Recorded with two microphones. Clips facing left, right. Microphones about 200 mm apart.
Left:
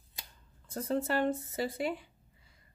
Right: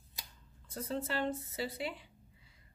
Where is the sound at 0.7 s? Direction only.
50° left (ahead or behind).